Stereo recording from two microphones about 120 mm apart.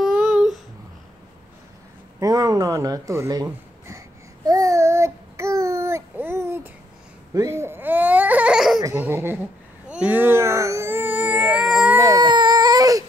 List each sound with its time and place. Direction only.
0.0 s a sound: 5° right (ahead or behind)
2.1 s speech: 30° right (ahead or behind)
4.5 s child singing: 30° right (ahead or behind)
7.3 s baby cry: 20° right (ahead or behind); by 8.8 s 5° right (ahead or behind)
8.9 s a sound: 15° right (ahead or behind)
11.6 s baby cry: 5° right (ahead or behind)
12.0 s baby cry: 35° right (ahead or behind)